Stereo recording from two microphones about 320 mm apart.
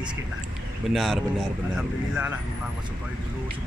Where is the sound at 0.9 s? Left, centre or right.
Centre.